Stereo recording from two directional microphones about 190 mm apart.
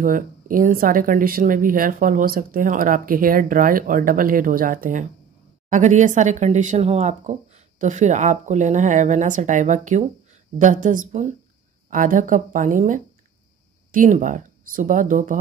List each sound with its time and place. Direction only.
0.0 s speech: 45° right (ahead or behind)